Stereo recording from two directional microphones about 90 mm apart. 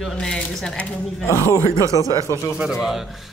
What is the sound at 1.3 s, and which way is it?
Speech, 35° left (ahead or behind).